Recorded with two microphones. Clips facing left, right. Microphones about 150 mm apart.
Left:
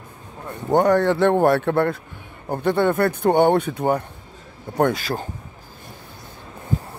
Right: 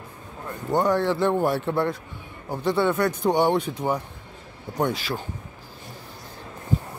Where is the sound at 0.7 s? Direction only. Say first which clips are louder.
Left 5 dB; 60° left (ahead or behind).